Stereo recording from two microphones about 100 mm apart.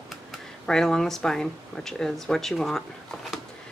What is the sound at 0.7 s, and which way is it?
Speech, 5° left (ahead or behind).